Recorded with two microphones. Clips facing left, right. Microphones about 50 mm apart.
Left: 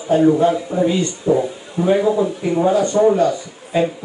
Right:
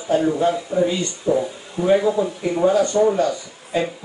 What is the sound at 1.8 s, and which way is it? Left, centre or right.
A man's voice, centre.